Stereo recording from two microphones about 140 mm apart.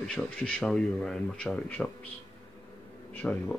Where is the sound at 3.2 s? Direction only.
5° left (ahead or behind).